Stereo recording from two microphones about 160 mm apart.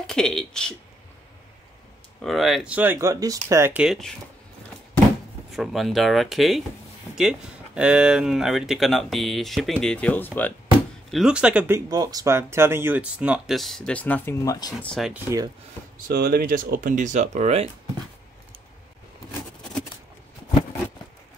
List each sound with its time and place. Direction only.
0.0 s speech: 5° left (ahead or behind)
2.2 s speech: centre (ahead or behind); by 3.8 s 15° right (ahead or behind)
3.8 s speech: centre (ahead or behind)
5.5 s speech: centre (ahead or behind)
11.1 s speech: 5° right (ahead or behind)
11.9 s speech: 25° right (ahead or behind); by 14.7 s 20° left (ahead or behind)
14.8 s speech: centre (ahead or behind)
16.1 s speech: 65° right (ahead or behind); by 17.6 s 45° right (ahead or behind)